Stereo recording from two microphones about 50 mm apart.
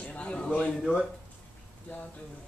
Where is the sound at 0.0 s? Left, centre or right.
Left.